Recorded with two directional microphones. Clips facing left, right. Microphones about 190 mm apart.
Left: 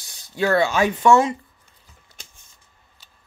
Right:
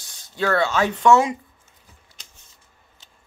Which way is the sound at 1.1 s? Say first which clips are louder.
Even; 10° right (ahead or behind).